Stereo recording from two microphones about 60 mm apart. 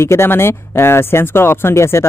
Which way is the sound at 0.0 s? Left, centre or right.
Left.